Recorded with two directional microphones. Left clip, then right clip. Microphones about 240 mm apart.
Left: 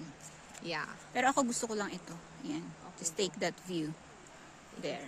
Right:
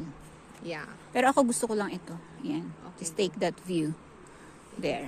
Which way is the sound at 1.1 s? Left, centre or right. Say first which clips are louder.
Right 6 dB; centre.